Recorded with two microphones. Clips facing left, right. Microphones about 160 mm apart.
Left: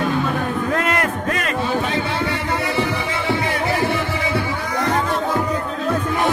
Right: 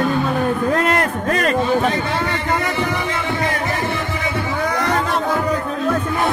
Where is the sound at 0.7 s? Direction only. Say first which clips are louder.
Right 2 dB; 35° right (ahead or behind).